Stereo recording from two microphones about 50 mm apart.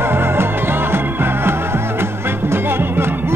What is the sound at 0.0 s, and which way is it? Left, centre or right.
Music, right.